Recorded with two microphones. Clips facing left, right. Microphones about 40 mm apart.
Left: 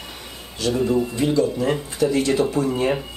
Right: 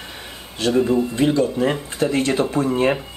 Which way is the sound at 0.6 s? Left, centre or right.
Right.